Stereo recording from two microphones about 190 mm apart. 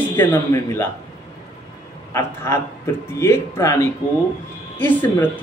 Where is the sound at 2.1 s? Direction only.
15° left (ahead or behind).